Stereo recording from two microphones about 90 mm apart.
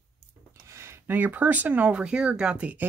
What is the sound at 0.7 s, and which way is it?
Speech, 30° right (ahead or behind).